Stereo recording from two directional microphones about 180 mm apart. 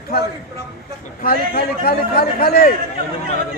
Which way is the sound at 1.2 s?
55° left (ahead or behind).